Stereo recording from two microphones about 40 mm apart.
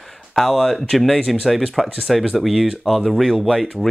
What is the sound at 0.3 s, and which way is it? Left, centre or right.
Speech, centre.